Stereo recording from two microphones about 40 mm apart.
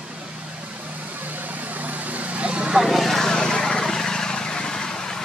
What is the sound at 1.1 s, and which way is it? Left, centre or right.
Vehicle, right.